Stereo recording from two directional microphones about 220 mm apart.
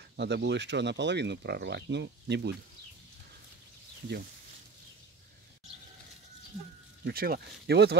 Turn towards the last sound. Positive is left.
turn(degrees=-50)  # may be behind; listen again after turning